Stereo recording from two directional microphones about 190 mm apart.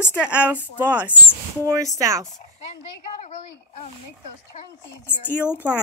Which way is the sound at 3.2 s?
35° left (ahead or behind).